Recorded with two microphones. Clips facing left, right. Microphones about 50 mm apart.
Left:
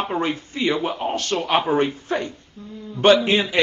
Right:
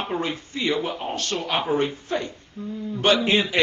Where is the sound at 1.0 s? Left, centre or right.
Left.